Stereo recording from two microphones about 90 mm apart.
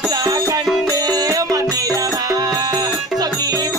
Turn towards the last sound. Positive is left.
turn(degrees=-45)  # may be behind; listen again after turning